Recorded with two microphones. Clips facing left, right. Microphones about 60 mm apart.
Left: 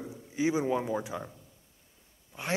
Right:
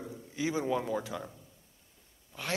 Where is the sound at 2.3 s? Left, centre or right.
Left.